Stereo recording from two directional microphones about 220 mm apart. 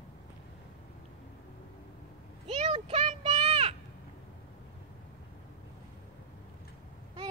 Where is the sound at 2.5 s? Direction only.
30° right (ahead or behind).